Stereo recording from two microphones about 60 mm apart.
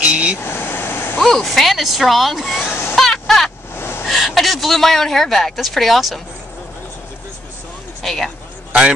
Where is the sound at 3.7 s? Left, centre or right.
Left.